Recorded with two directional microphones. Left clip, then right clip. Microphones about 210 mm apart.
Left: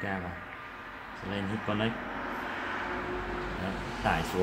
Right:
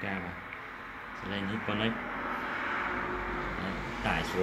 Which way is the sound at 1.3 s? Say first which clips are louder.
Left 1 dB; 35° left (ahead or behind).